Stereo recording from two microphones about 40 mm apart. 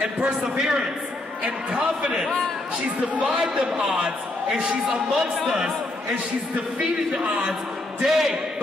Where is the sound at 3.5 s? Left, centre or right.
Right.